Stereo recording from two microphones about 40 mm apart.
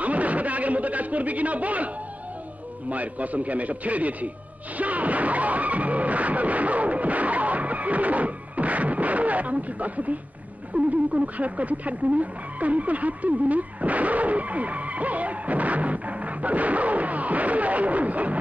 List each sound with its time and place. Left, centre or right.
0.0 s a man's voice: right
2.9 s speech: right
4.7 s vehicle: right
10.7 s speech: right